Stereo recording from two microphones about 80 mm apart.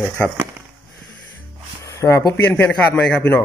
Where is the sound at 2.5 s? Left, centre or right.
Left.